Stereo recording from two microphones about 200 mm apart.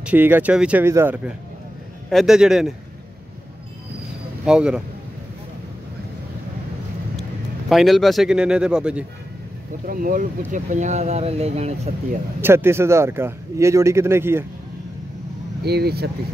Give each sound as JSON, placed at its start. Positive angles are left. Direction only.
{"t": 0.0, "sound": "speech", "side_deg": -10}
{"t": 4.5, "sound": "speech", "side_deg": -5}
{"t": 7.7, "sound": "speech", "side_deg": 0}
{"t": 9.8, "sound": "speech", "side_deg": -45}
{"t": 12.4, "sound": "speech", "side_deg": -10}
{"t": 15.6, "sound": "speech", "side_deg": -55}